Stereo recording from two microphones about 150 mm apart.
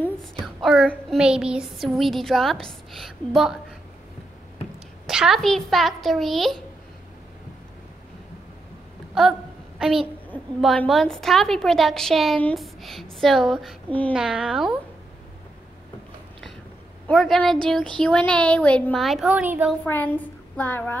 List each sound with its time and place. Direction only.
0.2 s child singing: centre (ahead or behind)
5.0 s child singing: 5° right (ahead or behind)
9.2 s child singing: centre (ahead or behind)
9.8 s a sound: 5° right (ahead or behind)
10.9 s child singing: centre (ahead or behind)
13.8 s speech: 10° left (ahead or behind)
14.1 s child singing: 5° right (ahead or behind)
17.1 s child singing: centre (ahead or behind)
19.4 s speech: 15° right (ahead or behind)
19.8 s a woman's voice: 10° left (ahead or behind)